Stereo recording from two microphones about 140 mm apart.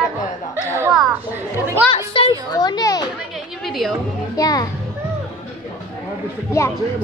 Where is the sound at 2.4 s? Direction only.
25° left (ahead or behind).